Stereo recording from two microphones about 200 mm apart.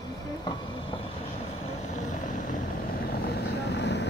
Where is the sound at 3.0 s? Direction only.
50° left (ahead or behind).